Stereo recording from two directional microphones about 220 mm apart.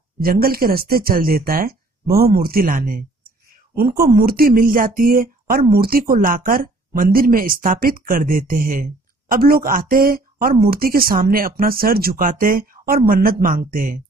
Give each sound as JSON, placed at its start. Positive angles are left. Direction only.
{"t": 0.2, "sound": "speech", "side_deg": -45}